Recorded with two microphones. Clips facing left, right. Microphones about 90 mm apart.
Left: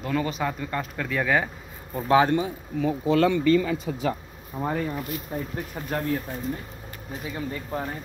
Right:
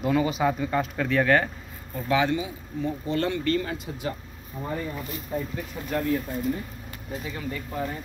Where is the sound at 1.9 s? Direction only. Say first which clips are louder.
Left 4 dB; 35° left (ahead or behind).